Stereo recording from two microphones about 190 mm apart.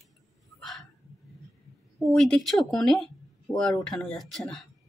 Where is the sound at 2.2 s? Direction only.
Centre (ahead or behind).